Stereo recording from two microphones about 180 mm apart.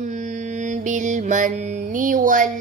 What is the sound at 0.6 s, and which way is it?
Female singing, 45° right (ahead or behind).